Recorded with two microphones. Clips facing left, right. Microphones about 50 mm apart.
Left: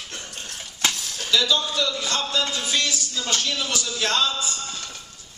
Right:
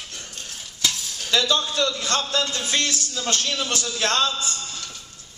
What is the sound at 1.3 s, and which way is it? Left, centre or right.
Speech, right.